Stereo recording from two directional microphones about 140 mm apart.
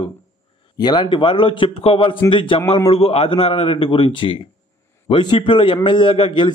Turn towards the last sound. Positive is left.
turn(degrees=40)  # may be behind; listen again after turning